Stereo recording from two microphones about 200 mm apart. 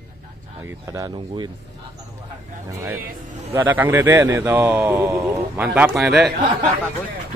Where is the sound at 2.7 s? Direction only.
15° right (ahead or behind).